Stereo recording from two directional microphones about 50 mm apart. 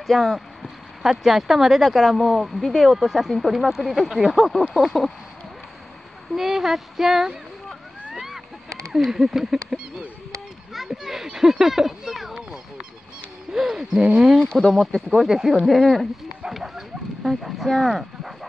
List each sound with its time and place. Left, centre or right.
0.0 s speech: centre
6.3 s speech: centre
8.1 s a sound: centre
8.9 s a child's voice: centre
14.4 s speech: centre
15.0 s speech: centre
16.4 s speech: centre